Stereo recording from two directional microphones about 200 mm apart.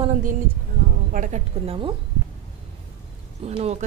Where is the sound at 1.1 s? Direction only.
40° right (ahead or behind).